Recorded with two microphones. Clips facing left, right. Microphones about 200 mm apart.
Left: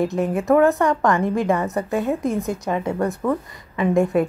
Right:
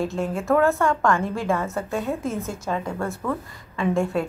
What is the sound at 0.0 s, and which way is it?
A woman's voice, 20° left (ahead or behind).